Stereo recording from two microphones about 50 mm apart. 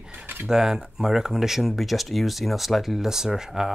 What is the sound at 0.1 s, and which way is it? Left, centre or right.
Cutlery, right.